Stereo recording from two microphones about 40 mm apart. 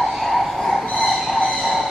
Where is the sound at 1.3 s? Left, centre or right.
Left.